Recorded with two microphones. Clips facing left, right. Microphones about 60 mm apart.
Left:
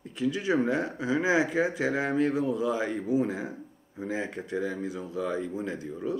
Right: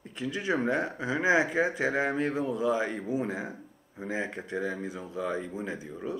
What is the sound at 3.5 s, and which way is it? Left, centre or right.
Speech, centre.